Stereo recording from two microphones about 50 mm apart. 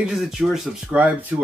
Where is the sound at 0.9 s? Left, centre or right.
Right.